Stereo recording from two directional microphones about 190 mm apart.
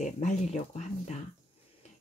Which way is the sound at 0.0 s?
40° left (ahead or behind).